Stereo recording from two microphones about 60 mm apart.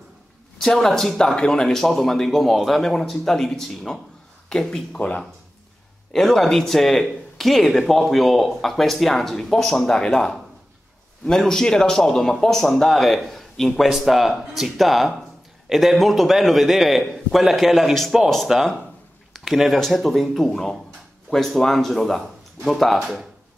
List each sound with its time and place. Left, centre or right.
0.6 s speech: centre
6.1 s speech: centre